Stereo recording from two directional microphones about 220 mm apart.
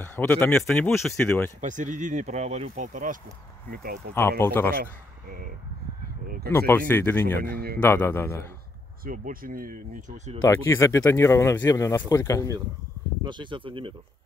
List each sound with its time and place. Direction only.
0.0 s speech: 10° left (ahead or behind)
1.6 s speech: 35° right (ahead or behind)
4.1 s speech: 10° left (ahead or behind)
6.2 s speech: 40° right (ahead or behind)
6.5 s speech: 10° left (ahead or behind)
7.3 s speech: 45° right (ahead or behind)
7.8 s speech: 10° left (ahead or behind)
9.0 s speech: 40° right (ahead or behind)
10.4 s speech: 15° left (ahead or behind)
13.2 s speech: 20° right (ahead or behind)